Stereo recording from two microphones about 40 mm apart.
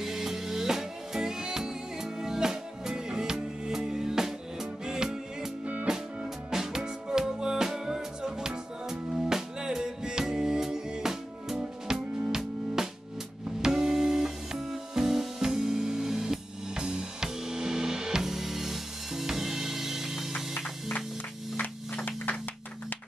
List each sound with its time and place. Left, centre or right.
0.0 s music: centre